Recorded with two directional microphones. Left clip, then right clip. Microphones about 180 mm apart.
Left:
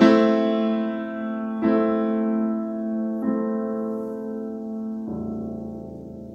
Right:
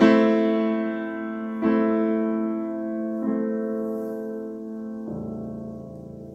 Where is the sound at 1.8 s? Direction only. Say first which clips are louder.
Even; 35° left (ahead or behind).